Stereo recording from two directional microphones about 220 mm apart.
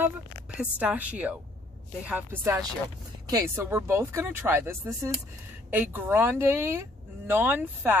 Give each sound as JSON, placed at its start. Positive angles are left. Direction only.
{"t": 0.5, "sound": "a woman's voice", "side_deg": -5}